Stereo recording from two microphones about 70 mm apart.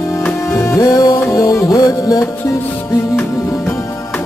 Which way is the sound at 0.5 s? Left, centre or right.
Left.